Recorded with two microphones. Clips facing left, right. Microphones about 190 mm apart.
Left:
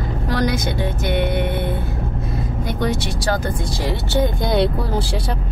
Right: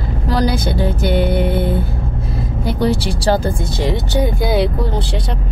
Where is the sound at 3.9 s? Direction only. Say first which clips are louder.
Right 1 dB; 15° right (ahead or behind).